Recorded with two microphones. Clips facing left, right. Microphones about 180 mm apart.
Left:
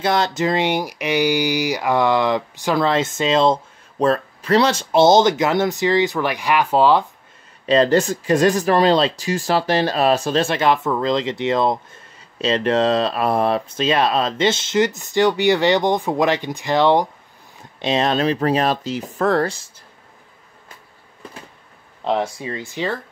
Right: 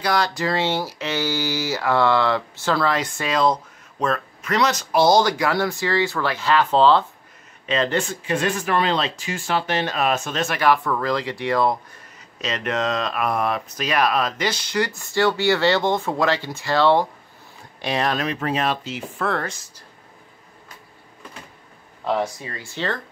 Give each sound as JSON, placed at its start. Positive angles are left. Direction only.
{"t": 0.0, "sound": "speech", "side_deg": 25}
{"t": 7.6, "sound": "speech", "side_deg": 35}
{"t": 22.0, "sound": "speech", "side_deg": 25}